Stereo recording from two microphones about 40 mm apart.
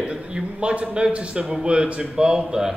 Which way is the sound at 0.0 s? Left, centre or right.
Right.